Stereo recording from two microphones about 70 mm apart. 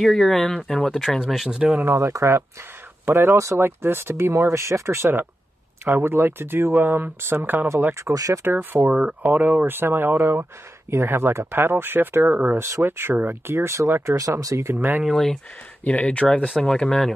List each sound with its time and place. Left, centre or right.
0.0 s speech: centre
1.9 s speech: right
3.1 s speech: right
3.3 s speech: right
3.6 s speech: right
8.0 s speech: right
8.5 s speech: right
12.6 s speech: right
14.1 s speech: right
14.7 s speech: right
15.0 s speech: centre
15.8 s speech: centre
16.4 s speech: centre